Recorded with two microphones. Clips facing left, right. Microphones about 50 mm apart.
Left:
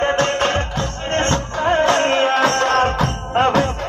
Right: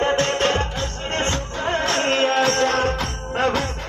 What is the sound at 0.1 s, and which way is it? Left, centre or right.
Music, left.